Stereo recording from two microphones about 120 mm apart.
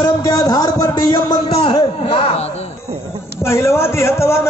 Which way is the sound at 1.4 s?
60° left (ahead or behind).